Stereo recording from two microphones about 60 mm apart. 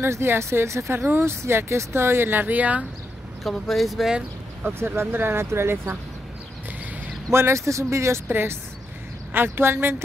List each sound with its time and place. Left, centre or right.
0.0 s speech: right
3.4 s speech: centre
4.6 s speech: right
7.2 s speech: right
8.3 s speech: right